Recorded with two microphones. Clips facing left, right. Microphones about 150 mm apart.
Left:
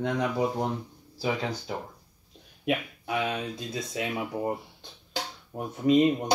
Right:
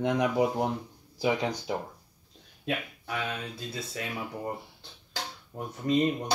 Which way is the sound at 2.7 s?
20° left (ahead or behind).